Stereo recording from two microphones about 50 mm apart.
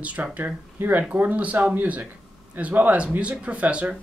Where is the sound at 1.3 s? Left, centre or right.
Right.